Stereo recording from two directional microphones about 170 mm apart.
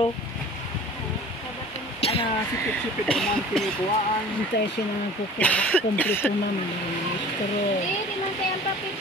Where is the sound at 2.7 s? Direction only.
5° left (ahead or behind).